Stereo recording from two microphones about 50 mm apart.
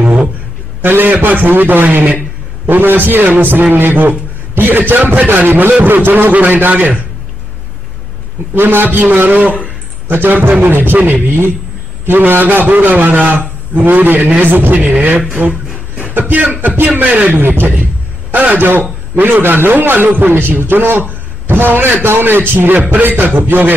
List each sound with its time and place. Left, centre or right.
0.8 s a man's voice: right
8.5 s a man's voice: right
12.1 s a man's voice: right
14.8 s a man's voice: right
16.0 s a sound: right
16.6 s a man's voice: right
16.9 s a man's voice: right
17.4 s a man's voice: right